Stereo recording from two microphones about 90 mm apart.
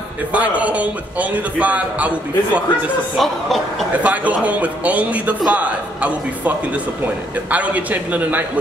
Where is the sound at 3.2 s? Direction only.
Centre (ahead or behind).